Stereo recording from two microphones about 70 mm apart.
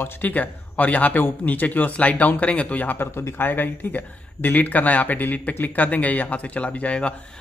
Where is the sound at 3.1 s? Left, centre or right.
Left.